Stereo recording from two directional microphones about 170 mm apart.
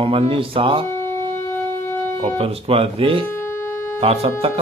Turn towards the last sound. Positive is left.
turn(degrees=-35)  # may be behind; listen again after turning